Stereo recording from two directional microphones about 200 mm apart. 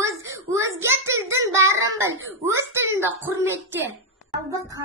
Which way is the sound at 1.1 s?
15° right (ahead or behind).